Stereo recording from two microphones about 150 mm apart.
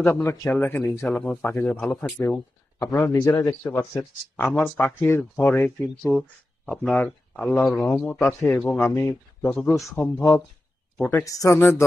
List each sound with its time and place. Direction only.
0.2 s speech: 20° left (ahead or behind)
6.1 s speech: 5° left (ahead or behind)
8.7 s speech: 20° left (ahead or behind)
9.6 s speech: 5° left (ahead or behind)